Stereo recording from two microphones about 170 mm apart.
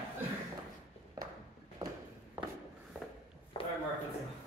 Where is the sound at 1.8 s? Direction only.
20° right (ahead or behind).